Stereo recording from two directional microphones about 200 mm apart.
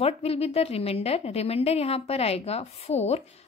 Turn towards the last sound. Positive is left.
turn(degrees=30)  # may be behind; listen again after turning